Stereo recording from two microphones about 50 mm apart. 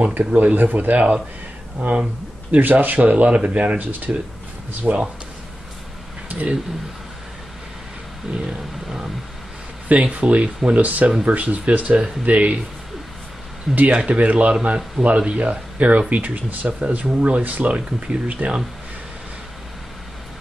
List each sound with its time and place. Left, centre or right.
0.0 s speech: right
2.5 s speech: right
6.2 s a sound: right
8.5 s vehicle: centre
9.8 s speech: right
13.7 s speech: right